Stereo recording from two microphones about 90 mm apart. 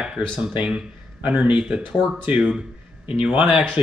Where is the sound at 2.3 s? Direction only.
10° right (ahead or behind).